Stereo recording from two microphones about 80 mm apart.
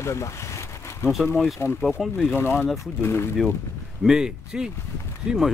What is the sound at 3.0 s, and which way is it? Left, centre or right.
Speech, left.